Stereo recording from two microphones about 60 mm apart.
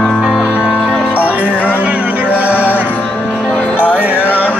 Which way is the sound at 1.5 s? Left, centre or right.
Left.